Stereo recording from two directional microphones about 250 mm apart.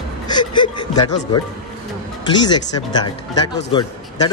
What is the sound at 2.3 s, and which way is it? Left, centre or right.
Speech, centre.